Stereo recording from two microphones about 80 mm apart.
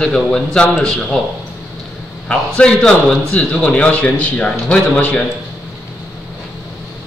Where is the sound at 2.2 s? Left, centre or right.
Centre.